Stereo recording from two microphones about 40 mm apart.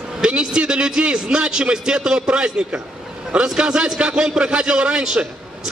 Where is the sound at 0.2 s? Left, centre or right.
Right.